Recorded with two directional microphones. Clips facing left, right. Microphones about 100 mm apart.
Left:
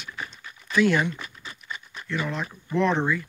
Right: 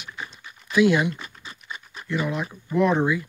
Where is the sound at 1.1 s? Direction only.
30° right (ahead or behind).